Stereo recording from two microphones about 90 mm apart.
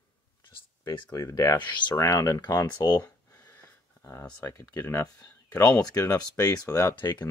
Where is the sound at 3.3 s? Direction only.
30° left (ahead or behind).